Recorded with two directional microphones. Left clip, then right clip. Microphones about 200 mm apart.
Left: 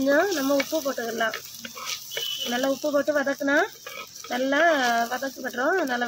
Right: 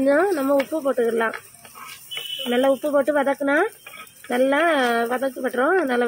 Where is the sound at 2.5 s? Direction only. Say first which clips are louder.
Right 6 dB; 35° right (ahead or behind).